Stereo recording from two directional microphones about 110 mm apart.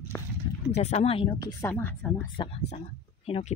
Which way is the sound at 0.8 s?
75° left (ahead or behind).